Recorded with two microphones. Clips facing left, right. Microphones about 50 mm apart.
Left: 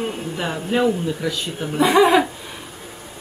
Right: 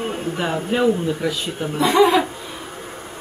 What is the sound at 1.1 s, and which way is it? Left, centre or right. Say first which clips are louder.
Speech: right 2 dB; centre.